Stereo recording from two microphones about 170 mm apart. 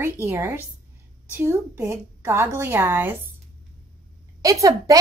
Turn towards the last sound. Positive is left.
turn(degrees=-20)  # may be behind; listen again after turning